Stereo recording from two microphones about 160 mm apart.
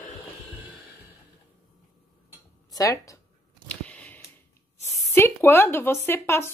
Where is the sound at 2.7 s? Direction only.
20° left (ahead or behind).